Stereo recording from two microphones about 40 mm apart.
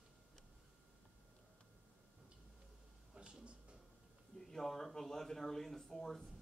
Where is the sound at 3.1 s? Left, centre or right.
Right.